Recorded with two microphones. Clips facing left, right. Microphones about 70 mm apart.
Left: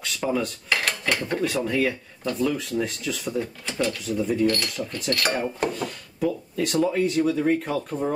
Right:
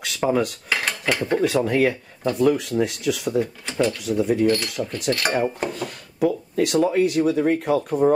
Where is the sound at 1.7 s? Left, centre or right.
Right.